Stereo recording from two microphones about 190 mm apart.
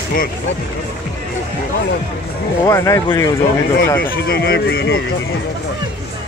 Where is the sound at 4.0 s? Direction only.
60° left (ahead or behind).